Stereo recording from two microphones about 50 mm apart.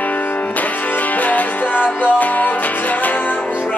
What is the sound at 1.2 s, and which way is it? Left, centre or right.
Music, left.